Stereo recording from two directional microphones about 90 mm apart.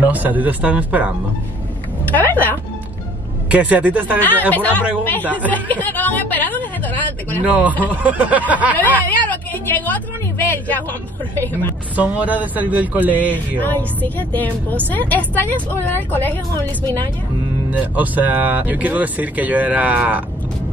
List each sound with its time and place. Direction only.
0.0 s speech: 20° right (ahead or behind)
2.1 s a woman's voice: 20° left (ahead or behind)
3.4 s speech: 15° right (ahead or behind)
4.2 s a woman's voice: 20° left (ahead or behind)
7.4 s speech: 15° right (ahead or behind)
8.7 s a woman's voice: 20° left (ahead or behind)
12.0 s speech: 15° right (ahead or behind)
13.6 s a woman's voice: 20° left (ahead or behind)
17.6 s speech: 20° right (ahead or behind)